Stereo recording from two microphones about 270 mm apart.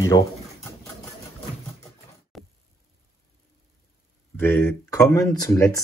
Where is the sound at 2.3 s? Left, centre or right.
Centre.